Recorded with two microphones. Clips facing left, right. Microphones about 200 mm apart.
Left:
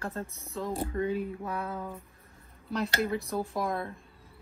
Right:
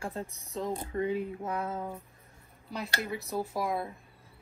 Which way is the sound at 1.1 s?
20° right (ahead or behind).